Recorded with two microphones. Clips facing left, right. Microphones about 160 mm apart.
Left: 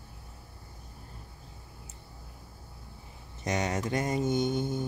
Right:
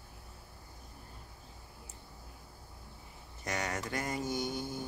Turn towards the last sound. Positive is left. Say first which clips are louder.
# left 8 dB
turn(degrees=20)  # may be behind; listen again after turning